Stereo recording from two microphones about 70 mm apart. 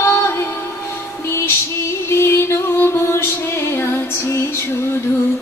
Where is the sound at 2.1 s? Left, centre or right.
Left.